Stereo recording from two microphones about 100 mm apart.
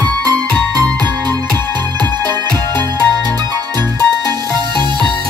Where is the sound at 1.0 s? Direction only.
45° right (ahead or behind).